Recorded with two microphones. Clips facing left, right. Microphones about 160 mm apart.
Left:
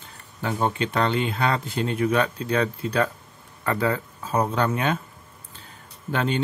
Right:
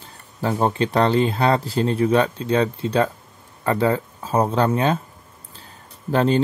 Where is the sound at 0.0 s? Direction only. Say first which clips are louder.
Right 5 dB; 35° right (ahead or behind).